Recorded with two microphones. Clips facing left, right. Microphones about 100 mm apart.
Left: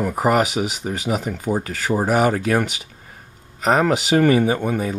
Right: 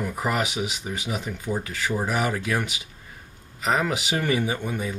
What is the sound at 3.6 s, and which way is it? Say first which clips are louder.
Speech: left 7 dB; 45° left (ahead or behind).